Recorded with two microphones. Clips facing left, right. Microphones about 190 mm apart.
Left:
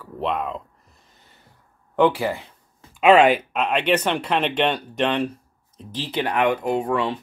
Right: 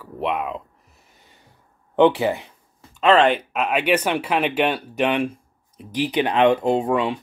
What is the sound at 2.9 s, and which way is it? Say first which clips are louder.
Speech: left 2 dB; 10° left (ahead or behind).